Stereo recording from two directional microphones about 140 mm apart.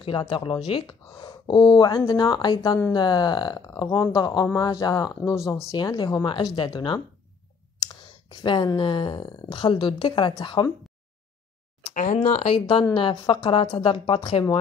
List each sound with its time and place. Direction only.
0.0 s speech: 40° left (ahead or behind)
11.9 s speech: 65° left (ahead or behind); by 14.4 s 40° left (ahead or behind)